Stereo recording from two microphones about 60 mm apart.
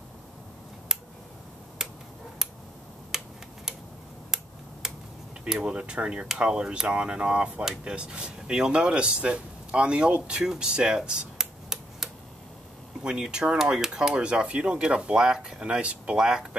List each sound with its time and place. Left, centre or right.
1.8 s finger snapping: centre
3.1 s a sound: centre
4.8 s computer keyboard: centre
5.4 s speech: centre